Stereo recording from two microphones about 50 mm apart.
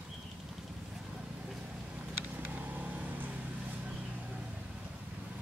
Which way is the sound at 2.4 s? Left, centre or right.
Right.